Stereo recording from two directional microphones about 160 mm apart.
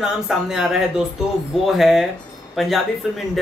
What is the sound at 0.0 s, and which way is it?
Speech, 5° right (ahead or behind).